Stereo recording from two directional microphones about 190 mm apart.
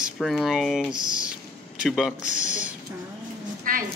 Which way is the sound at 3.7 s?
45° right (ahead or behind).